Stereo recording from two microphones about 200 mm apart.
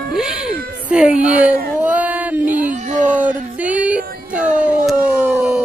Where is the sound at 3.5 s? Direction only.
5° right (ahead or behind).